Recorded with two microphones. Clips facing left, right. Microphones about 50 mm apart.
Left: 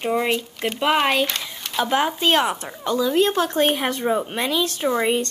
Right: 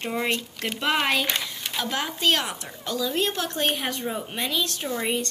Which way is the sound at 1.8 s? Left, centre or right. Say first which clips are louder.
Left 5 dB; left.